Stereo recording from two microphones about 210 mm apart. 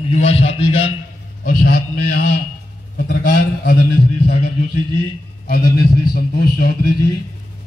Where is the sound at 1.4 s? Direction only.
40° left (ahead or behind).